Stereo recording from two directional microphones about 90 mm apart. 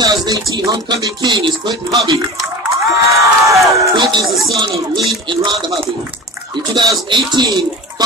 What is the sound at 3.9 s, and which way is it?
Speech, 55° right (ahead or behind).